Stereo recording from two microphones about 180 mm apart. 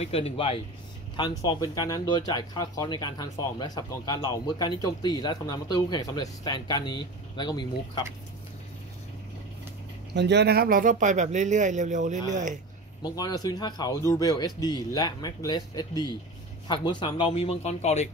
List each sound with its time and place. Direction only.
0.0 s speech: 35° left (ahead or behind)
10.1 s speech: 70° right (ahead or behind); by 12.5 s 45° right (ahead or behind)
13.0 s speech: 20° left (ahead or behind); by 18.0 s 40° left (ahead or behind)